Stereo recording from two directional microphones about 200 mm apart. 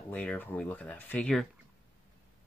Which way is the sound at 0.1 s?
5° left (ahead or behind).